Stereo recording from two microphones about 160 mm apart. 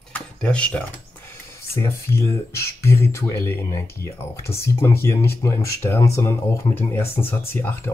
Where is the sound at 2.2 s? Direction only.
15° left (ahead or behind).